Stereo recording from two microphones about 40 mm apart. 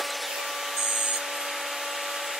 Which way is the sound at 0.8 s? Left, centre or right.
Centre.